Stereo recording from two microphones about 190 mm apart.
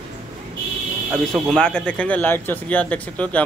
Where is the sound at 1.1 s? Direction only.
Centre (ahead or behind).